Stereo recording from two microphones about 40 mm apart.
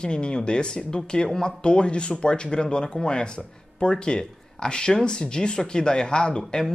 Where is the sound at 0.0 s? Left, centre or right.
Left.